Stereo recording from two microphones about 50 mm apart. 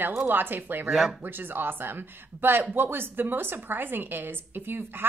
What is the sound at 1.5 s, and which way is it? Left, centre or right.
A woman's voice, right.